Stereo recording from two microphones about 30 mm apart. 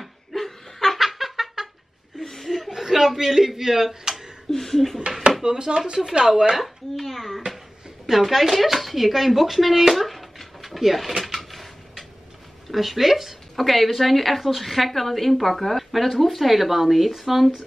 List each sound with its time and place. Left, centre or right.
0.0 s laughter: centre
0.9 s a sound: centre
2.2 s chuckle: centre
2.7 s chuckle: centre
3.2 s speech: centre
4.5 s speech: centre
5.4 s speech: right
6.6 s a child's voice: centre
8.1 s a sound: centre
12.7 s a woman's voice: centre
13.6 s a woman's voice: centre